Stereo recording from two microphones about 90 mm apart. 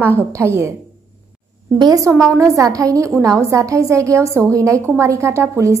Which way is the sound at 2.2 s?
40° right (ahead or behind).